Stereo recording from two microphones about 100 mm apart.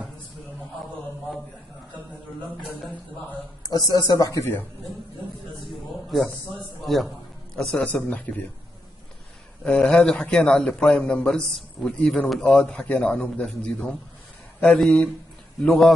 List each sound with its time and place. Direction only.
2.6 s speech: centre (ahead or behind)
3.6 s speech: 40° left (ahead or behind)
4.3 s speech: 25° left (ahead or behind)
6.0 s a man's voice: centre (ahead or behind)
9.7 s a man's voice: 10° left (ahead or behind)